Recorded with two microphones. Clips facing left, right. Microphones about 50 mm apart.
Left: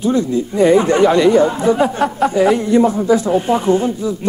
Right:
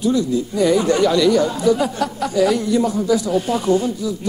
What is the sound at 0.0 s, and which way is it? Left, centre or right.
Speech, left.